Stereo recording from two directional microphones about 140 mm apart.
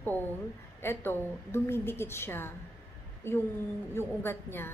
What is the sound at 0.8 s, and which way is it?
A woman's voice, 15° left (ahead or behind).